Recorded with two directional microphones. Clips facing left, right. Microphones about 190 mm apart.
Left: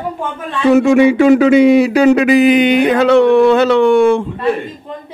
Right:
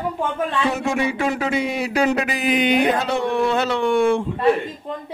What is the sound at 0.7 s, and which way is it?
Speech, 90° left.